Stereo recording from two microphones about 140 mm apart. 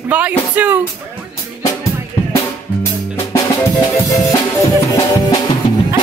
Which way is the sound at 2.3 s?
20° left (ahead or behind).